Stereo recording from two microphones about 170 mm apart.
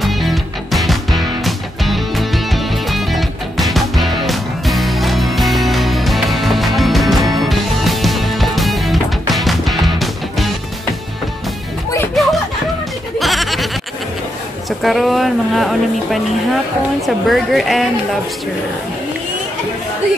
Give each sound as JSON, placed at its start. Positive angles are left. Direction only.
{"t": 0.0, "sound": "music", "side_deg": 0}
{"t": 12.2, "sound": "a sound", "side_deg": 0}
{"t": 13.2, "sound": "goat", "side_deg": 0}
{"t": 14.8, "sound": "speech", "side_deg": 0}